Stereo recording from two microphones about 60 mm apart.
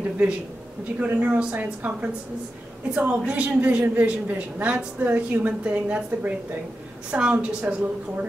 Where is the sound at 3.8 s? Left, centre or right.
Right.